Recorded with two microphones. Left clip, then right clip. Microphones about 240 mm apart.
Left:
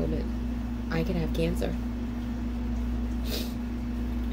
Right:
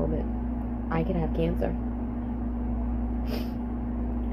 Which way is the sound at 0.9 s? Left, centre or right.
Centre.